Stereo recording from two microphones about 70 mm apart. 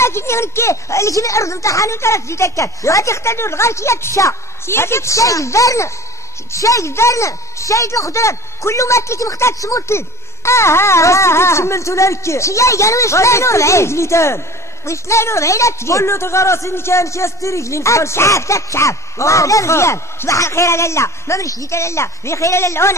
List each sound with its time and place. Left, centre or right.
0.0 s a man's voice: left